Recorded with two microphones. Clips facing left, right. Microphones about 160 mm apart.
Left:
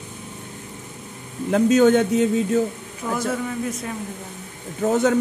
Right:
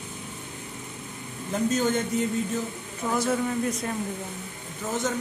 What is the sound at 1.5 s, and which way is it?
A man's voice, 70° left (ahead or behind).